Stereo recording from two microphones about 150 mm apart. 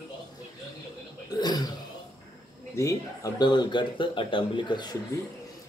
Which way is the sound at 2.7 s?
20° left (ahead or behind).